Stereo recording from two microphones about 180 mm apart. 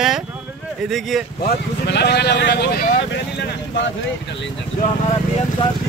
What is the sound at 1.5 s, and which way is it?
Speech, 65° left (ahead or behind).